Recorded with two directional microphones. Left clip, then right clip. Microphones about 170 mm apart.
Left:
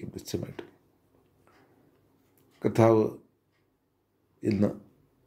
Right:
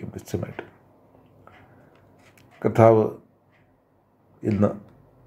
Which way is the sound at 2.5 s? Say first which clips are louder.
Right 6 dB; 30° left (ahead or behind).